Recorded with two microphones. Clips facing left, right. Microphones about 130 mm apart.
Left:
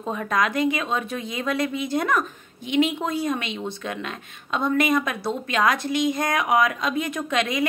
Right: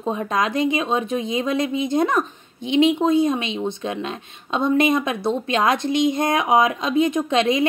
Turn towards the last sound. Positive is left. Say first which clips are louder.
# right 6 dB
turn(degrees=-25)  # may be behind; listen again after turning